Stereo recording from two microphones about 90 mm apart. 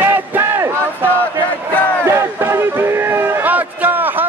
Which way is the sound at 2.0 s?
25° right (ahead or behind).